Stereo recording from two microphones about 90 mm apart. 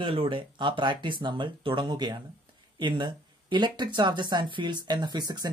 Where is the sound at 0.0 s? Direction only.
80° right.